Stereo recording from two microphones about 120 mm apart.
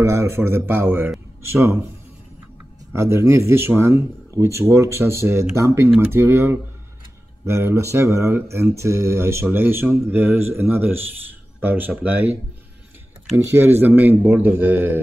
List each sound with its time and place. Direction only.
0.0 s speech: 20° right (ahead or behind)
2.9 s speech: 20° right (ahead or behind)
5.9 s a man's voice: 10° right (ahead or behind)
6.1 s a man's voice: 20° right (ahead or behind)
13.4 s a man's voice: 20° right (ahead or behind)